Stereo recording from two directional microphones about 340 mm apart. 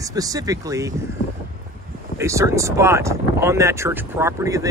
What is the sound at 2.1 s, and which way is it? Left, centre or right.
Speech, centre.